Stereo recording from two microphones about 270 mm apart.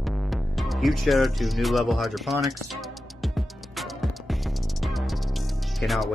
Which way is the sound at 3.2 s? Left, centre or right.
Centre.